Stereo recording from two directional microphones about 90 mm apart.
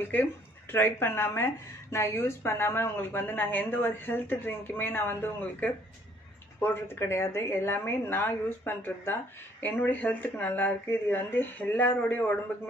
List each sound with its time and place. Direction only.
0.1 s a woman's voice: 25° left (ahead or behind)